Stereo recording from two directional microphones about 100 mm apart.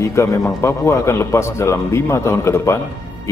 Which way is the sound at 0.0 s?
30° left (ahead or behind).